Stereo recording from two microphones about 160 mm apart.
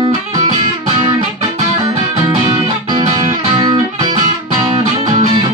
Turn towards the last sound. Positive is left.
turn(degrees=-25)  # may be behind; listen again after turning